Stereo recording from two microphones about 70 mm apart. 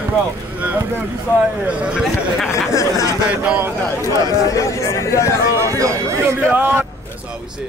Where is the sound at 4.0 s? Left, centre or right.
Left.